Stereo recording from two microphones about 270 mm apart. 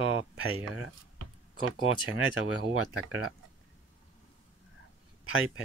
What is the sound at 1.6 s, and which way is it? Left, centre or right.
Speech, left.